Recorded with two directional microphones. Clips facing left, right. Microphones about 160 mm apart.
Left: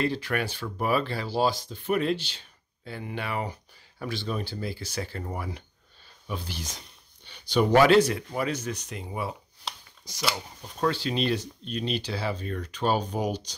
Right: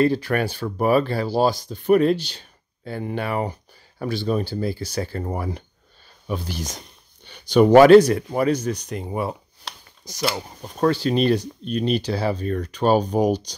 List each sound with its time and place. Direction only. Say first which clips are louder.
0.0 s speech: right 8 dB; 40° right (ahead or behind)